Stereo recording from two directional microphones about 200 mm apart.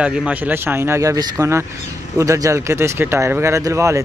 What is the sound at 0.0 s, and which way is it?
Speech, 5° right (ahead or behind).